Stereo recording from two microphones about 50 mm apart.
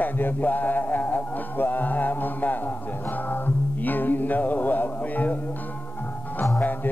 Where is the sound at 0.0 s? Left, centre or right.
Left.